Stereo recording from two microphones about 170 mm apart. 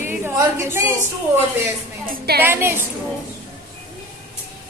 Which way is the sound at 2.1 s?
70° right (ahead or behind).